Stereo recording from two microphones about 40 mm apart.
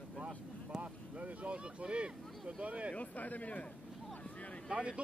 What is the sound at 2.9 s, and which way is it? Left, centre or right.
Speech, left.